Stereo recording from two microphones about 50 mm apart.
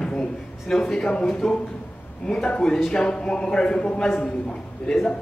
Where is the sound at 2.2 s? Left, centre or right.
Centre.